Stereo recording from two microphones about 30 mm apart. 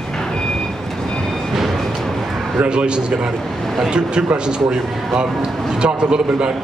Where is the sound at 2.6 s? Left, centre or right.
Right.